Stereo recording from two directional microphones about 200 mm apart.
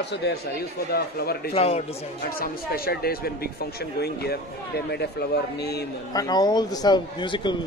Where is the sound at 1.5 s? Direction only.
30° left (ahead or behind).